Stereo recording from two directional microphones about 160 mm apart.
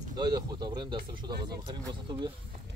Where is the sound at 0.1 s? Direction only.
25° right (ahead or behind).